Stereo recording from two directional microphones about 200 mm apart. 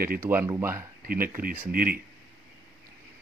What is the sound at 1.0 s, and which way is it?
Speech, 45° right (ahead or behind).